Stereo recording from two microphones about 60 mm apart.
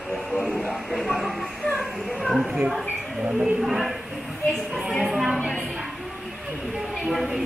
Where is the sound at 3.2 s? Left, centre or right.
Centre.